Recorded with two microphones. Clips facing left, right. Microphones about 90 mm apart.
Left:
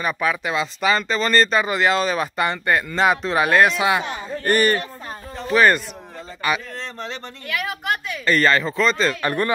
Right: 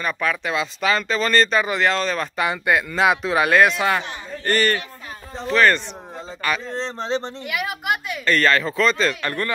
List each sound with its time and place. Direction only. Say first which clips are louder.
0.0 s speech: left 1 dB; 5° left (ahead or behind)
6.7 s speech: right 7 dB; 30° right (ahead or behind)
7.4 s a woman's voice: even; 10° right (ahead or behind)
8.3 s speech: left 1 dB; centre (ahead or behind)
9.2 s speech: left 4 dB; 20° left (ahead or behind)